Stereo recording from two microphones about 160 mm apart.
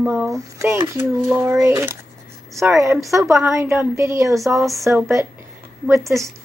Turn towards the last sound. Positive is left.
turn(degrees=-20)  # may be behind; listen again after turning